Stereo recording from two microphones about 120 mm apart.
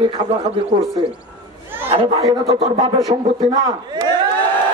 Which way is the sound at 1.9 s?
55° right (ahead or behind).